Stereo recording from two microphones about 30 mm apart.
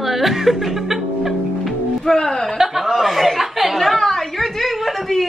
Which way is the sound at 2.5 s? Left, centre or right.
Centre.